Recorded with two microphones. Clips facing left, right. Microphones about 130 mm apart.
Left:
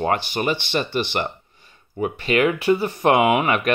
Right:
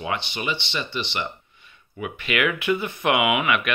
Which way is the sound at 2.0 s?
35° left (ahead or behind).